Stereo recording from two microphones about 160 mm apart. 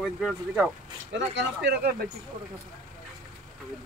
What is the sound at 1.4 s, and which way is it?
Speech, 90° right.